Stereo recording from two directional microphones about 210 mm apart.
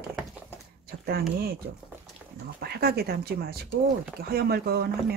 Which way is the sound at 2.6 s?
45° right (ahead or behind).